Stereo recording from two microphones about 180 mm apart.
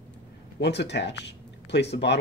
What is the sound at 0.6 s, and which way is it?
Speech, 70° left (ahead or behind).